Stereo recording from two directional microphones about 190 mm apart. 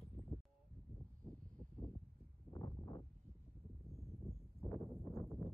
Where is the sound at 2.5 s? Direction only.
20° left (ahead or behind).